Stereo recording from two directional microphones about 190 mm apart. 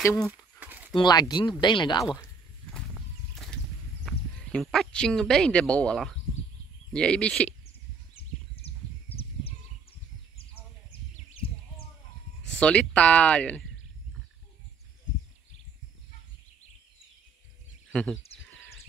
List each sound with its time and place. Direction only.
0.0 s speech: 5° left (ahead or behind)
0.3 s a sound: 10° right (ahead or behind)
0.9 s speech: 20° left (ahead or behind)
4.0 s speech: centre (ahead or behind)
8.6 s a sound: 30° left (ahead or behind)
12.5 s speech: 5° left (ahead or behind)
17.9 s speech: 5° left (ahead or behind)